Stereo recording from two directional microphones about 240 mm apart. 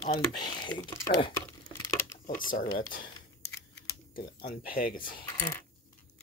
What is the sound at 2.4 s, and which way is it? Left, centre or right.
Speech, left.